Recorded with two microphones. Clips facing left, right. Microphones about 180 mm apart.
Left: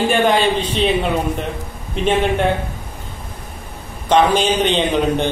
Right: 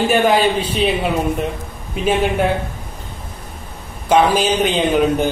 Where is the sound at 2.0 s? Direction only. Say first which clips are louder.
Even; 5° right (ahead or behind).